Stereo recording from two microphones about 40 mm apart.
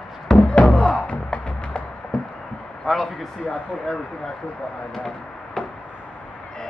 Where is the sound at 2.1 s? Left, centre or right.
Left.